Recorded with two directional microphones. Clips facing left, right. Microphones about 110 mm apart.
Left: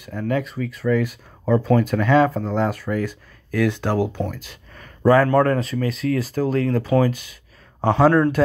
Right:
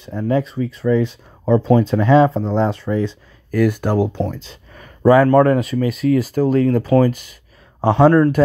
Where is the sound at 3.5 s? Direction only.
10° right (ahead or behind); by 4.6 s 25° right (ahead or behind).